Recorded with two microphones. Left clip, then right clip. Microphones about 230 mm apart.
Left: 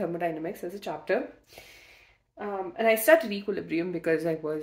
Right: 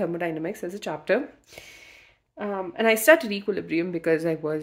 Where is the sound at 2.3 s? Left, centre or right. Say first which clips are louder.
Right 3 dB; right.